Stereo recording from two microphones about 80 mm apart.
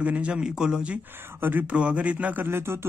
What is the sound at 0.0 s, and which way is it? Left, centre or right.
Speech, centre.